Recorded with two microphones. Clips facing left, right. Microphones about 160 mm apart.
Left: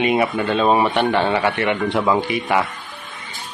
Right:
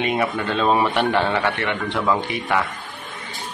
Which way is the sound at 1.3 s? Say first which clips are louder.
Left 3 dB; 10° left (ahead or behind).